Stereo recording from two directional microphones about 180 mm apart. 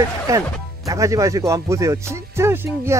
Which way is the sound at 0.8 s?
15° right (ahead or behind).